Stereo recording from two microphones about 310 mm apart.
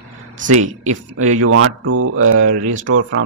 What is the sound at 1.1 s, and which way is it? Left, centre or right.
Speech, right.